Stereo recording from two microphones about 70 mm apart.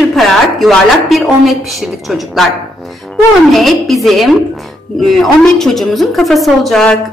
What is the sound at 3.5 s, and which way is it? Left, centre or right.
A woman's voice, centre.